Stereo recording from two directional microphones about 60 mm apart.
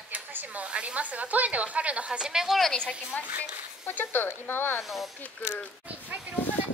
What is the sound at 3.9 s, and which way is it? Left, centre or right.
Speech, left.